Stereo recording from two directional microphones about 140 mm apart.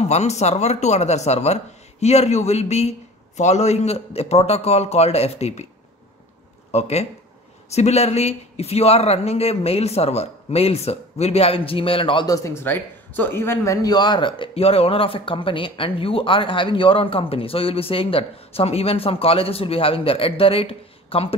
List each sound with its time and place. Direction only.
0.0 s speech: 50° left (ahead or behind)
6.7 s speech: 50° left (ahead or behind)
12.3 s speech: 20° left (ahead or behind); by 21.4 s 45° left (ahead or behind)